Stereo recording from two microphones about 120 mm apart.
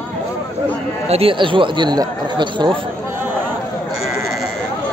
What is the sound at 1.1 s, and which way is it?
Speech, 50° right (ahead or behind).